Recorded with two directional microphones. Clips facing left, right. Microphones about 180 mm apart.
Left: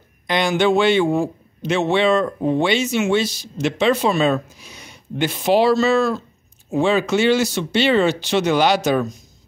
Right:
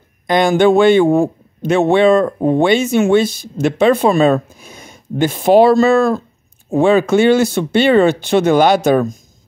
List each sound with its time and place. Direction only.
0.3 s a man's voice: 50° right (ahead or behind)